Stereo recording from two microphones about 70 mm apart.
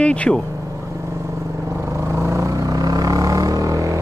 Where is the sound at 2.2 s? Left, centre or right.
Right.